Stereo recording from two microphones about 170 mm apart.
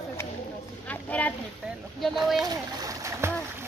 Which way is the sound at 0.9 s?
10° left (ahead or behind).